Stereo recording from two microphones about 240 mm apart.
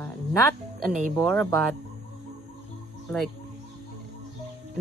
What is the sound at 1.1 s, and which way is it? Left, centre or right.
Speech, centre.